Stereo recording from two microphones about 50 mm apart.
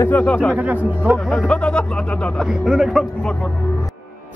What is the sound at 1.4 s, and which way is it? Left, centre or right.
Speech, left.